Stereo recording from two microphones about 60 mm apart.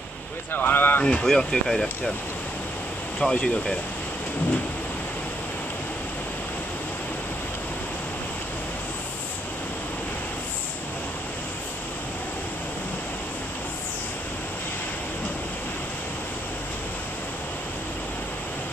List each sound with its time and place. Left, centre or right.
0.5 s speech: left
1.0 s speech: centre
3.2 s speech: centre